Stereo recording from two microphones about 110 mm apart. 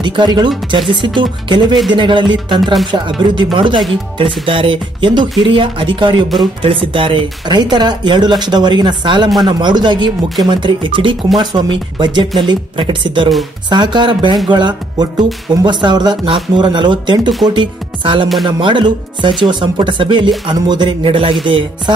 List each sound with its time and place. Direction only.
0.0 s speech: 45° right (ahead or behind)